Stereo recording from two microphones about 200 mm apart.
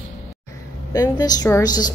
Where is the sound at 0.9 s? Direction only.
20° left (ahead or behind).